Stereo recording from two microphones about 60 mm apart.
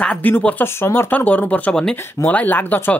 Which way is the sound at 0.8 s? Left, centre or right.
Left.